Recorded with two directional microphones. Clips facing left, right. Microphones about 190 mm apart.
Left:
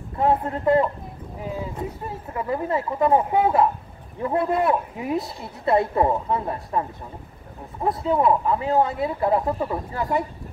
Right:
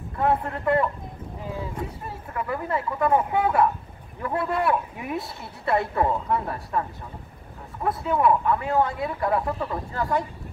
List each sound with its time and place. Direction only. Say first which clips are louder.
0.2 s speech: left 3 dB; 25° left (ahead or behind)
2.3 s speech: left 3 dB; 25° left (ahead or behind)